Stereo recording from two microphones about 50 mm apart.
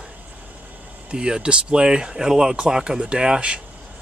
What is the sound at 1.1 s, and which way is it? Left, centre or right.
Speech, centre.